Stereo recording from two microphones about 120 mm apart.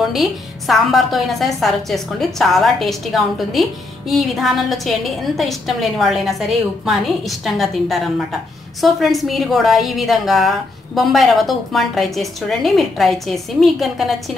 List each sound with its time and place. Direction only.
0.0 s a woman's voice: centre (ahead or behind)